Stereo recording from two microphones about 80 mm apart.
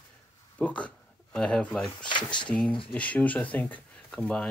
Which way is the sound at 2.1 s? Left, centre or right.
Left.